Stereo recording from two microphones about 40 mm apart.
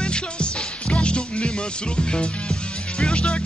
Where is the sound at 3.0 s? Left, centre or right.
Left.